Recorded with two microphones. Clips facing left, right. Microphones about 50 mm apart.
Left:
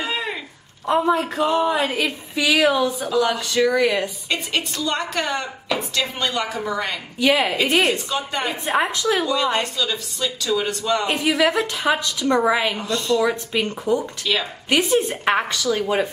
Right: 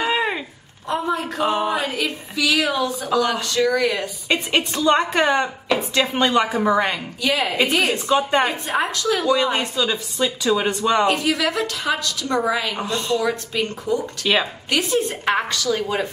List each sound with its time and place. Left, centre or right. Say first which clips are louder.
0.0 s a sound: right 5 dB; right
0.8 s a woman's voice: left 4 dB; centre
1.4 s a woman's voice: even; right
1.8 s a woman's voice: left 2 dB; centre
4.3 s a woman's voice: right 8 dB; right
7.2 s a woman's voice: left 5 dB; left
7.9 s a woman's voice: right 6 dB; right
8.7 s a woman's voice: left 2 dB; centre
9.3 s a woman's voice: right 2 dB; centre
11.1 s a woman's voice: left 1 dB; left
12.7 s a woman's voice: left 1 dB; right
13.2 s a woman's voice: left 2 dB; centre
14.2 s a woman's voice: right 3 dB; right
14.7 s a woman's voice: left 3 dB; left